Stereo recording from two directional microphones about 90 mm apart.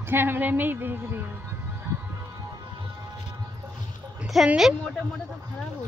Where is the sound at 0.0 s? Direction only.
25° right (ahead or behind).